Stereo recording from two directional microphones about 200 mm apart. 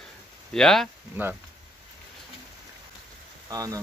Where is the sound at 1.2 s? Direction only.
10° right (ahead or behind).